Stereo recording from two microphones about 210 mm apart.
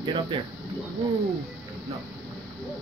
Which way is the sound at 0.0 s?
25° right (ahead or behind).